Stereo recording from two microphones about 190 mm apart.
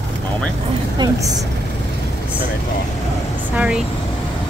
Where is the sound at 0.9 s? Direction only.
20° right (ahead or behind).